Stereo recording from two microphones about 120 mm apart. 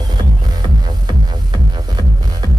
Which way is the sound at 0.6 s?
35° right (ahead or behind).